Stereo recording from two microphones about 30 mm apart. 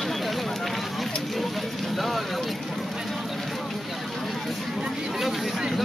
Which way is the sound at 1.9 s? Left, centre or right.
Centre.